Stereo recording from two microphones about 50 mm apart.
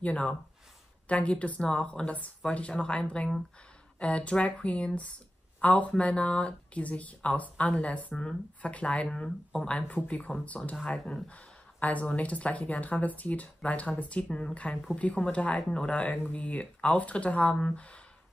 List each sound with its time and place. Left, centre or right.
0.0 s speech: left